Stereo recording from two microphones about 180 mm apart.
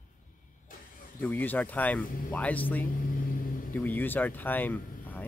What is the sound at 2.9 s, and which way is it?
Vehicle, 50° left (ahead or behind).